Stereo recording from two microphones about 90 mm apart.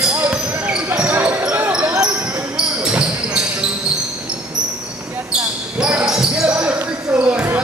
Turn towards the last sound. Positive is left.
turn(degrees=-15)  # may be behind; listen again after turning